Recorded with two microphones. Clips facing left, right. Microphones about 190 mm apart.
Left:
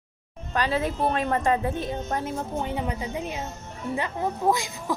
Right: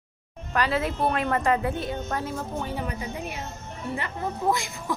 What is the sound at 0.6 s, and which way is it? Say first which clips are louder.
A woman's voice: even; 15° left (ahead or behind).